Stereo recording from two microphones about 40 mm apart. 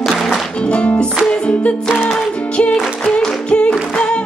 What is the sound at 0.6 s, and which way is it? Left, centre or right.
Music, left.